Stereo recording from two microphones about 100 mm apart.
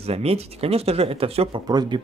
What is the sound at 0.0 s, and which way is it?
Speech, 90° right.